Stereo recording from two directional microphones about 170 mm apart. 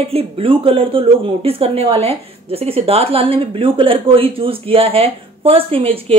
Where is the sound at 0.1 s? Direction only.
35° right (ahead or behind).